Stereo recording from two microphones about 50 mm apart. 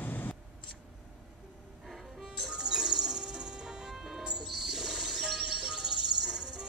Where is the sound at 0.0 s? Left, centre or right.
Left.